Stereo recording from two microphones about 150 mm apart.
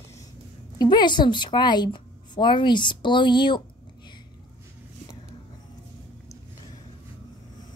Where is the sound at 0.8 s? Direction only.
30° left (ahead or behind).